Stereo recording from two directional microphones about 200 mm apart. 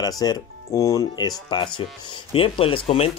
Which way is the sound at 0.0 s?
20° left (ahead or behind).